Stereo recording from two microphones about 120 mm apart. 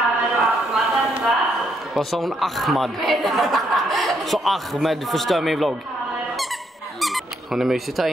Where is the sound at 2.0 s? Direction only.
Centre (ahead or behind).